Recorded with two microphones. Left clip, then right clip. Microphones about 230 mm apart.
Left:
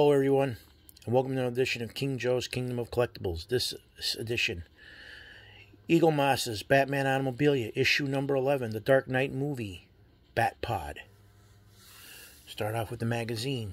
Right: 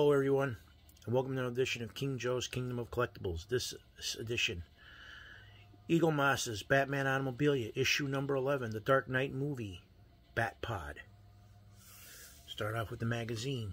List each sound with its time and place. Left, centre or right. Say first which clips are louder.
0.0 s speech: left 6 dB; left
12.5 s speech: left 5 dB; left